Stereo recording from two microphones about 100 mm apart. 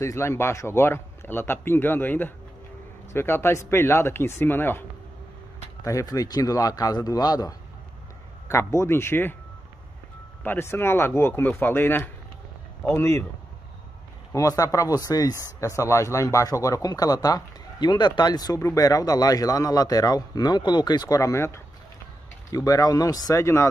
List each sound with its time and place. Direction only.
0.0 s a man's voice: 25° left (ahead or behind)
5.9 s a man's voice: 35° left (ahead or behind)
8.5 s a man's voice: 25° left (ahead or behind)
10.4 s a man's voice: 20° left (ahead or behind)
14.3 s a man's voice: 35° left (ahead or behind)